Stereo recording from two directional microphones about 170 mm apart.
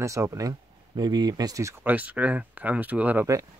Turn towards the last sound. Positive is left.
turn(degrees=-15)  # may be behind; listen again after turning